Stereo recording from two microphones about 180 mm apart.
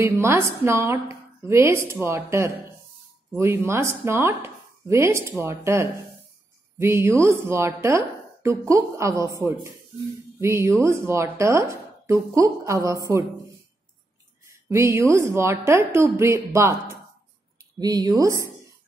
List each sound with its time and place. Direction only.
0.0 s a woman's voice: 15° right (ahead or behind)
14.7 s a woman's voice: 15° right (ahead or behind)
17.7 s speech: 20° right (ahead or behind)